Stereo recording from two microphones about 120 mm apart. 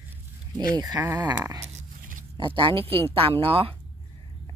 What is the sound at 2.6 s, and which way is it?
Speech, 50° right (ahead or behind).